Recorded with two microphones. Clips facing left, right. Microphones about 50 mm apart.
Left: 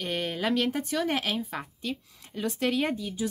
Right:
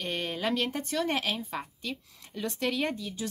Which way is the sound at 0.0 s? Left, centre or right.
Centre.